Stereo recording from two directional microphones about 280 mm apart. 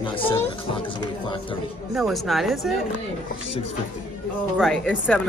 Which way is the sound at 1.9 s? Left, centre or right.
Centre.